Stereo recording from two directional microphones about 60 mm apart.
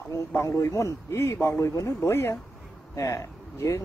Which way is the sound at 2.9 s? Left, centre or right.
Left.